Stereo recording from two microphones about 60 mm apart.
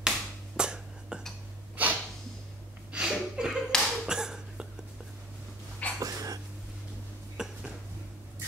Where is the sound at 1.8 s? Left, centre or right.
Right.